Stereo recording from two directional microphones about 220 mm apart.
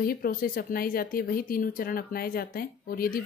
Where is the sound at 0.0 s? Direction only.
40° left (ahead or behind).